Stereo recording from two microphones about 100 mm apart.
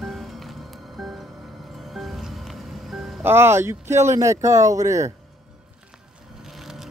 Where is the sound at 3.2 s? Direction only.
25° right (ahead or behind).